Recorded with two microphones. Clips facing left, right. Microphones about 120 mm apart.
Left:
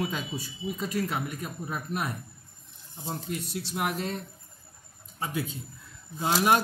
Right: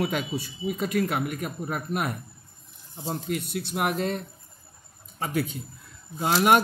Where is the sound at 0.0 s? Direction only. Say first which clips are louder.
Right 5 dB; 70° right (ahead or behind).